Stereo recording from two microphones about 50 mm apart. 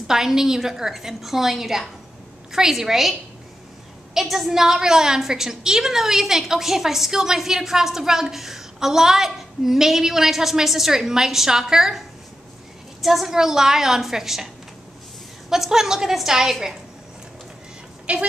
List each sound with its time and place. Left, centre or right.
0.0 s a woman's voice: centre
13.0 s a woman's voice: centre
15.5 s a woman's voice: centre
18.1 s speech: right